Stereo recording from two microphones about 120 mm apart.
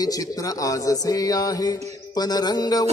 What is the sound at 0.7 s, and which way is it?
Music, 30° left (ahead or behind).